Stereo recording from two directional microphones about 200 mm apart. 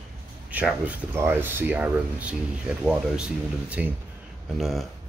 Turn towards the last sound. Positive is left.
turn(degrees=0)  # may be behind; listen again after turning